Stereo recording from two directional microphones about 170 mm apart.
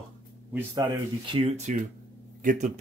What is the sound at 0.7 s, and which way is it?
Speech, 30° right (ahead or behind).